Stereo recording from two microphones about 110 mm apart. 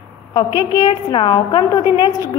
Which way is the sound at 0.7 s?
45° left (ahead or behind).